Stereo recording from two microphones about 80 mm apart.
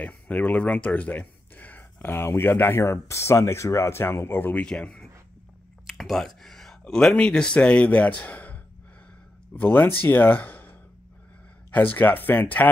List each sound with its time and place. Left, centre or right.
0.0 s speech: centre
4.6 s speech: centre
5.9 s a sound: centre
6.8 s a man's voice: centre
9.6 s speech: left